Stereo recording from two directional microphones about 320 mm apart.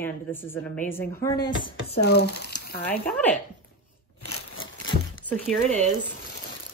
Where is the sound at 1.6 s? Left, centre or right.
Left.